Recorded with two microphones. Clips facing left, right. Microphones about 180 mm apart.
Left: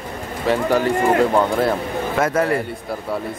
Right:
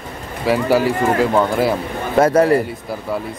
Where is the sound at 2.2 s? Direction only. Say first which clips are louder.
Right 7 dB; 35° right (ahead or behind).